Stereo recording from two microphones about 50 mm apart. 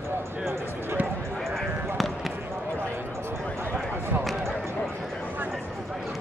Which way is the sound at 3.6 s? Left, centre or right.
Right.